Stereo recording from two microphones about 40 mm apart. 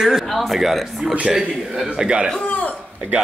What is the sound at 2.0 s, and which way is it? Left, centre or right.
Speech, right.